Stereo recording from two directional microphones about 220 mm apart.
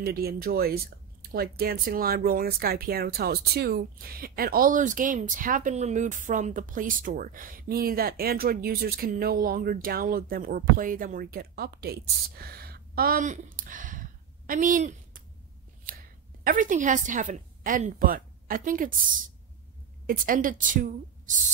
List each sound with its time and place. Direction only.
0.0 s a woman's voice: 45° right (ahead or behind)
16.4 s speech: 35° right (ahead or behind)